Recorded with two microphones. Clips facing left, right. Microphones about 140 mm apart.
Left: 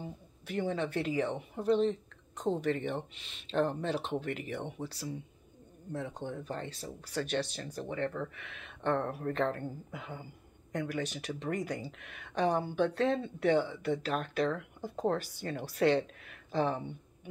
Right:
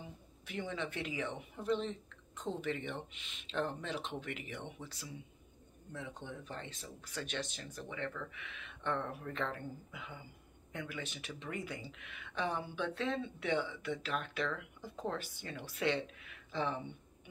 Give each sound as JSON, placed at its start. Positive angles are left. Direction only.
{"t": 0.0, "sound": "speech", "side_deg": 40}